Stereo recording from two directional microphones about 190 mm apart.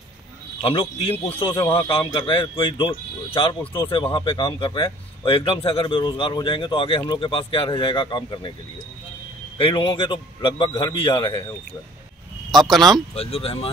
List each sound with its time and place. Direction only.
0.6 s a man's voice: 30° left (ahead or behind)
9.6 s a man's voice: 25° left (ahead or behind)
12.4 s speech: centre (ahead or behind)
13.1 s speech: 30° left (ahead or behind)